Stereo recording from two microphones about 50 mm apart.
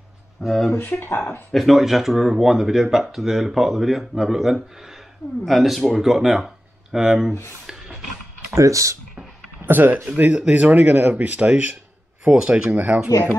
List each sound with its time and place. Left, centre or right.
0.4 s speech: centre
0.7 s speech: left
1.5 s speech: centre
7.6 s a sound: centre
8.5 s speech: right
9.7 s speech: right
12.4 s speech: centre
12.7 s speech: right